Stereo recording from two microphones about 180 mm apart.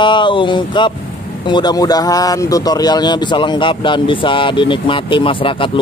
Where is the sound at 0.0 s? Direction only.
25° left (ahead or behind).